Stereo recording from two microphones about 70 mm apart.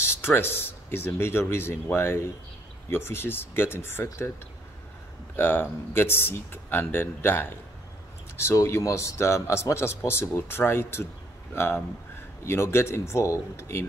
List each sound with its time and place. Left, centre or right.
0.2 s speech: left
5.3 s speech: left